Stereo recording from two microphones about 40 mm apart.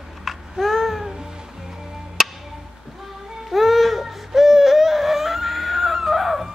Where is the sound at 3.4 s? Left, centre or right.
Centre.